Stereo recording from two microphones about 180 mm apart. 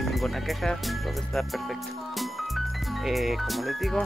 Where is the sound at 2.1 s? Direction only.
Centre (ahead or behind).